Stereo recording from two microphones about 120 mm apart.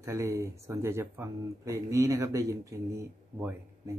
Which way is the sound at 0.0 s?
25° right (ahead or behind).